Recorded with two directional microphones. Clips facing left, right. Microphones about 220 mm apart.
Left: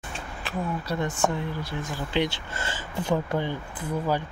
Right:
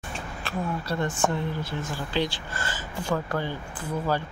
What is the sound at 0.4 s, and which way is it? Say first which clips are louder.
Speech: even; 15° left (ahead or behind).